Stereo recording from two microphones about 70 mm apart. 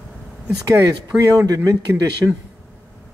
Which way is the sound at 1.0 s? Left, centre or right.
Right.